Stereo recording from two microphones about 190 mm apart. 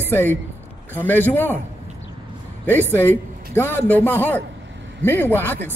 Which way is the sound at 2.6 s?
10° left (ahead or behind).